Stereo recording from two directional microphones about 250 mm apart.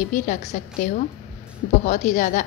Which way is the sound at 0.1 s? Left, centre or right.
Left.